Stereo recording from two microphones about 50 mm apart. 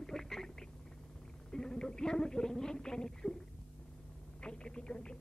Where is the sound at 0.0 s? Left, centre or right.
Centre.